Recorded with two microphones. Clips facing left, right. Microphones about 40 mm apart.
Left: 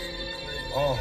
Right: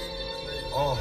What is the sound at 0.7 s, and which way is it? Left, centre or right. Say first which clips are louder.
Music: left 1 dB; left.